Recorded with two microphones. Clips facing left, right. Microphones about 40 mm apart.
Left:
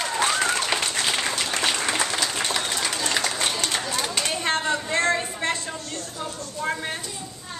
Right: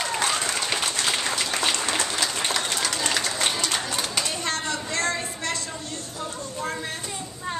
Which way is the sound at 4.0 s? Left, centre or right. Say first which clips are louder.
Left 1 dB; centre.